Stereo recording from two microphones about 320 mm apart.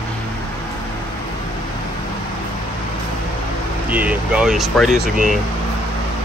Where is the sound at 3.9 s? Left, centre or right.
Centre.